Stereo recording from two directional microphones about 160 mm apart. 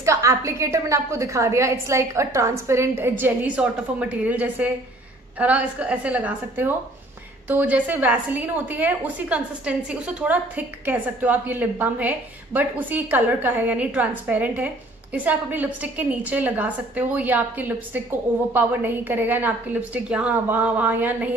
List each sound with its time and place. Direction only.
0.0 s a woman's voice: 20° right (ahead or behind)